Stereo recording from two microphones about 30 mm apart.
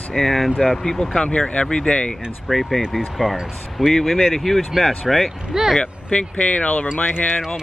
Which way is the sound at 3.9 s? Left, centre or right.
Centre.